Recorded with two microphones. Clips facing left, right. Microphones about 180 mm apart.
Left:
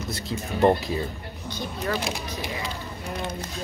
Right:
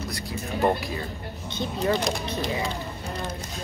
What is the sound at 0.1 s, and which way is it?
Speech, 25° left (ahead or behind).